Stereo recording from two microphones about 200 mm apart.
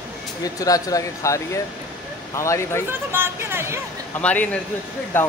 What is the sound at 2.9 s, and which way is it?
Speech, 10° right (ahead or behind).